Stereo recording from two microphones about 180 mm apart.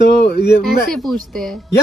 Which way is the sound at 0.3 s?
60° left (ahead or behind).